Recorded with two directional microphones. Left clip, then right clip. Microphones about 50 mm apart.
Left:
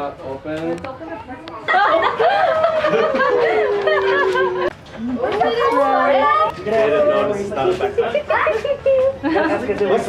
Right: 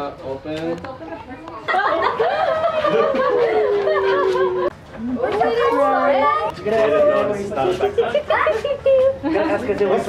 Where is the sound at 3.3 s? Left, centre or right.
Centre.